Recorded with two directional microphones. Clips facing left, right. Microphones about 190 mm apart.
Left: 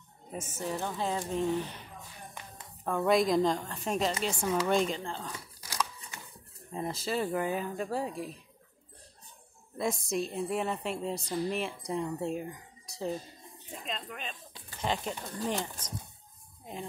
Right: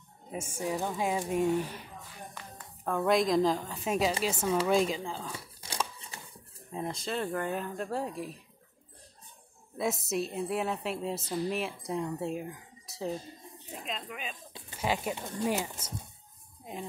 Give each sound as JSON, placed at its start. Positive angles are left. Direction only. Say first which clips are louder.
{"t": 0.3, "sound": "a woman's voice", "louder": "right 2 dB", "side_deg": -10}
{"t": 2.8, "sound": "a woman's voice", "louder": "even", "side_deg": 0}
{"t": 5.6, "sound": "scissors", "louder": "left 1 dB", "side_deg": -25}
{"t": 6.7, "sound": "a woman's voice", "louder": "left 1 dB", "side_deg": 5}
{"t": 9.8, "sound": "a woman's voice", "louder": "even", "side_deg": -5}